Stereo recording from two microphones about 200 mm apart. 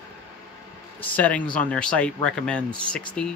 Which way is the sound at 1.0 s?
10° left (ahead or behind).